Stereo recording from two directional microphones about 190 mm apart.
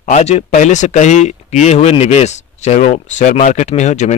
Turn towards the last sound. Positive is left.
turn(degrees=40)  # may be behind; listen again after turning